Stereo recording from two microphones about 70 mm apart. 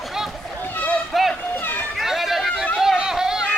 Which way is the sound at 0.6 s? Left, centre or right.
Left.